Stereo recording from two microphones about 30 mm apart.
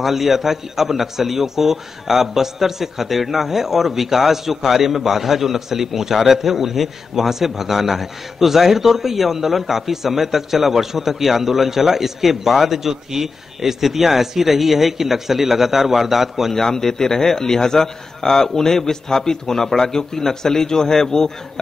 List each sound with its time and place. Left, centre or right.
0.0 s a man's voice: centre
16.5 s a man's voice: centre